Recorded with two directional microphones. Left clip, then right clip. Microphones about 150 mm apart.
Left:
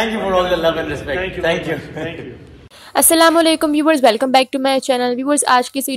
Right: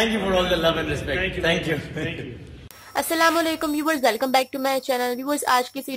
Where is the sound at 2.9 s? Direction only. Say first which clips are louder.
Left 8 dB; 45° left (ahead or behind).